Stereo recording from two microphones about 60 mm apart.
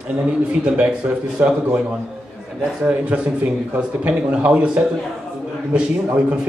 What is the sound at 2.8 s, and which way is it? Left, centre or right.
A man's voice, right.